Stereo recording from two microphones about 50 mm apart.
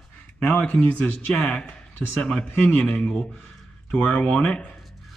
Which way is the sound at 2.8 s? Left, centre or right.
Centre.